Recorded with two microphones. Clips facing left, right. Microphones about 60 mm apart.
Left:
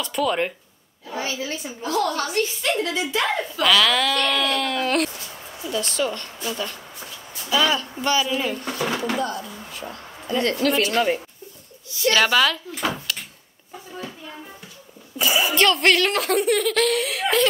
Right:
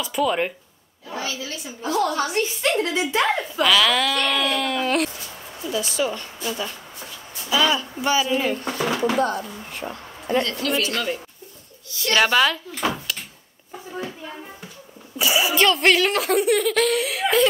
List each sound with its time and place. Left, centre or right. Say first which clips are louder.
0.0 s speech: right 1 dB; centre
1.1 s a woman's voice: left 2 dB; left
1.8 s a woman's voice: right 2 dB; centre
3.6 s a woman's voice: even; centre
8.6 s a woman's voice: right 2 dB; right
9.2 s speech: right 4 dB; right
10.4 s speech: left 5 dB; left
10.8 s speech: left 4 dB; left
12.1 s a woman's voice: even; centre
12.9 s door: even; centre
15.1 s speech: even; centre